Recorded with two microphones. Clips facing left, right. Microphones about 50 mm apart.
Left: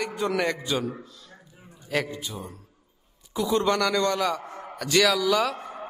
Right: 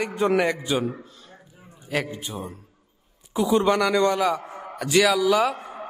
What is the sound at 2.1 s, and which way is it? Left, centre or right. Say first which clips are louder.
Speech: right 3 dB; right.